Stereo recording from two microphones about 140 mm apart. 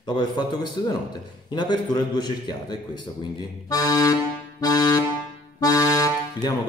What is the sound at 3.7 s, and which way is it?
Accordion, 25° left (ahead or behind).